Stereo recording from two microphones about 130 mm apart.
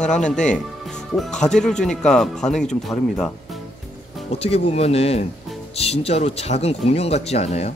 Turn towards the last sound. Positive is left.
turn(degrees=55)  # may be behind; listen again after turning